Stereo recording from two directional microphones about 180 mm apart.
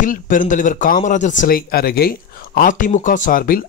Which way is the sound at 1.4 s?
55° left (ahead or behind).